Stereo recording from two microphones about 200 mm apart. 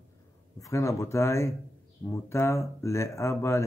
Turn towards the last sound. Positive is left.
turn(degrees=15)  # may be behind; listen again after turning